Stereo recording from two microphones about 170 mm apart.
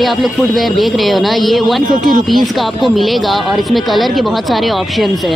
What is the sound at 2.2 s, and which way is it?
Speech, centre (ahead or behind).